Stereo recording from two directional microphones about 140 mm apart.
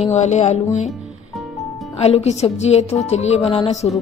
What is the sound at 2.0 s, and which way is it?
Music, 50° left (ahead or behind).